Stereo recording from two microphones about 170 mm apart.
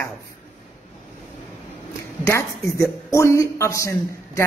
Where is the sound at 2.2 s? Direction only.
20° left (ahead or behind).